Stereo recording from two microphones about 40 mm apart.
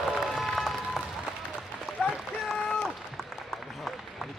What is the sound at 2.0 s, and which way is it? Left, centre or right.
Run, left.